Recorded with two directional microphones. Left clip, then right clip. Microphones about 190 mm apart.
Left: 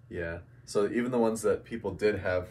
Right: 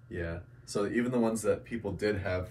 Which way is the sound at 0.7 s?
30° left (ahead or behind).